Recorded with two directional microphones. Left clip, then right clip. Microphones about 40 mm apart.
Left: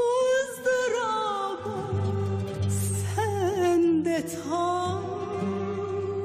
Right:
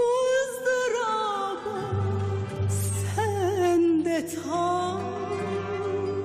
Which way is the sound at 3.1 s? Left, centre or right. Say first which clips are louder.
Right 1 dB; left.